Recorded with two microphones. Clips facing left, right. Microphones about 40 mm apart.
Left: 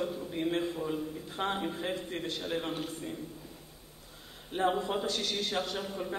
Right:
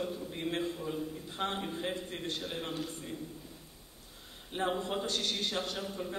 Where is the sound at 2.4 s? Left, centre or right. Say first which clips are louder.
Left 4 dB; left.